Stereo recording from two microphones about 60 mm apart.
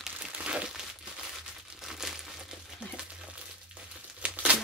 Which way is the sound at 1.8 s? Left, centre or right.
Centre.